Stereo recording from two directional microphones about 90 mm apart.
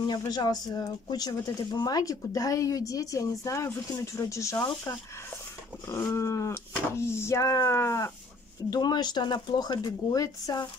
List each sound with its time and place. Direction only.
0.3 s speech: 50° left (ahead or behind); by 4.6 s 35° left (ahead or behind)
6.1 s speech: 35° left (ahead or behind)
8.6 s speech: 50° left (ahead or behind)